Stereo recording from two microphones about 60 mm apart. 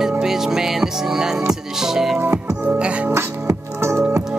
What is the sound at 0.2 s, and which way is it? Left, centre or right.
Music, centre.